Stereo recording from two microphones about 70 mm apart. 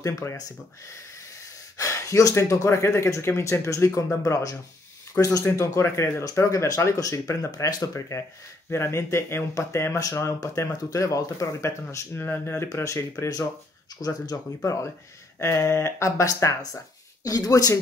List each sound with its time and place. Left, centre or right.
0.0 s speech: left
1.8 s speech: left
5.6 s speech: left
8.6 s speech: left
11.6 s speech: left
12.8 s speech: left
14.0 s speech: left
14.6 s speech: left
17.3 s speech: left